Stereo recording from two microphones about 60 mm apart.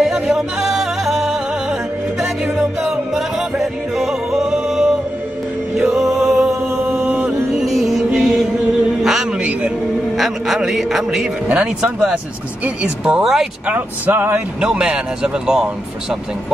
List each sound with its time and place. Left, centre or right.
0.0 s music: centre
5.8 s chant: centre
7.5 s music: centre
9.0 s a sound: centre
9.4 s music: right
10.1 s a man's voice: centre
11.4 s speech: centre
13.2 s a man's voice: centre
13.7 s speech: right
14.6 s speech: centre